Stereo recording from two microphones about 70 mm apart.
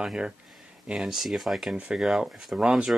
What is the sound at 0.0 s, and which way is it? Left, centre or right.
Speech, centre.